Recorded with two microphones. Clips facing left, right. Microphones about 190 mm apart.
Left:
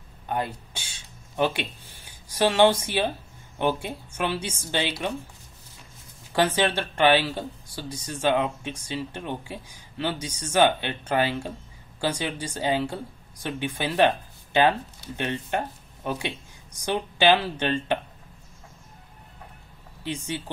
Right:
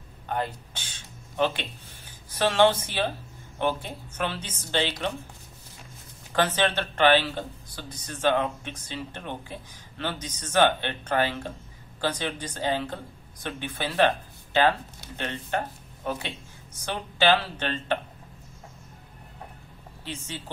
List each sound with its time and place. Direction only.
0.3 s a sound: 10° left (ahead or behind)
2.2 s speech: 15° left (ahead or behind)
6.3 s speech: 10° left (ahead or behind)
20.1 s speech: 15° left (ahead or behind)